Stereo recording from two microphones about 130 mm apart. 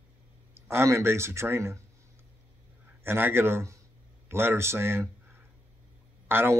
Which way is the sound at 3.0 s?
15° right (ahead or behind).